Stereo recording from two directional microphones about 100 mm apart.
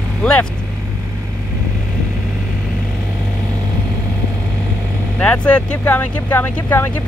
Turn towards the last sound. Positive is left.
turn(degrees=20)  # may be behind; listen again after turning